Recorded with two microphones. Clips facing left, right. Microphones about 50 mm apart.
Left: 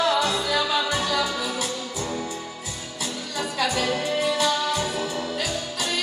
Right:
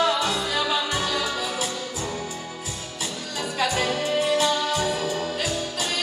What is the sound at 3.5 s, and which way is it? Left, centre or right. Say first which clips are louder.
Music: right 1 dB; right.